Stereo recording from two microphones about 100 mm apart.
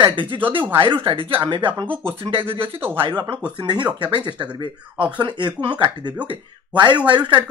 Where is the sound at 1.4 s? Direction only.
50° right (ahead or behind).